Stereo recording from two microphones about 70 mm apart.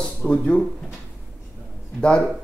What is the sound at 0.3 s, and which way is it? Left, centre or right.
Speech, centre.